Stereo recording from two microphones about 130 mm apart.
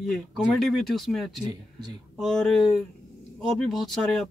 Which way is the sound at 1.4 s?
35° right (ahead or behind).